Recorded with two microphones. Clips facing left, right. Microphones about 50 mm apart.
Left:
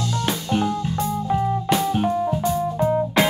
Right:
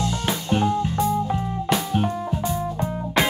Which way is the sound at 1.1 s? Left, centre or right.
Centre.